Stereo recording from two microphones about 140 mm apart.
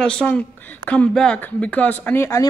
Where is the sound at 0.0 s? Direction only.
5° left (ahead or behind).